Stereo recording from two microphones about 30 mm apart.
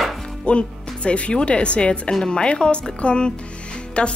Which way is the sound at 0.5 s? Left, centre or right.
Left.